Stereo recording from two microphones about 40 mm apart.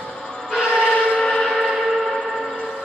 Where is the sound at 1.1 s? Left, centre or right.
Centre.